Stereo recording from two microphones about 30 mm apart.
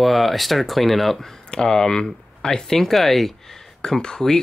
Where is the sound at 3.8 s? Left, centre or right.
Left.